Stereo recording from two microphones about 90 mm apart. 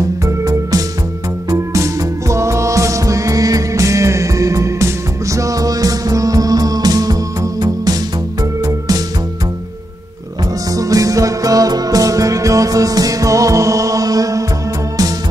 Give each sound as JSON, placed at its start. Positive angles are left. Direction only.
{"t": 0.2, "sound": "music", "side_deg": -40}
{"t": 10.7, "sound": "music", "side_deg": -40}